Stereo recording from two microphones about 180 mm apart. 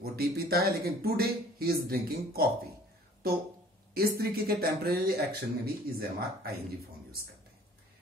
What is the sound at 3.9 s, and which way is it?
Speech, 55° right (ahead or behind).